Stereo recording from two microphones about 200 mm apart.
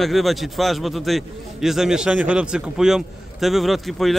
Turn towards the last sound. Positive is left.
turn(degrees=0)  # may be behind; listen again after turning